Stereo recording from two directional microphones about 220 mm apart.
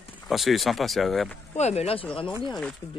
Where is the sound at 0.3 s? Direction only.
Centre (ahead or behind).